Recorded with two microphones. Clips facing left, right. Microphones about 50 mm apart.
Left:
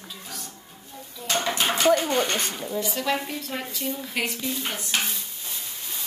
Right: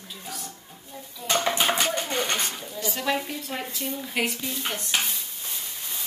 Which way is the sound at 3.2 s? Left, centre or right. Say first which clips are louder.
Left 1 dB; centre.